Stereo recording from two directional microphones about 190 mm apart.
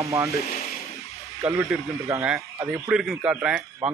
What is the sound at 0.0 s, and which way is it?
Speech, 15° right (ahead or behind).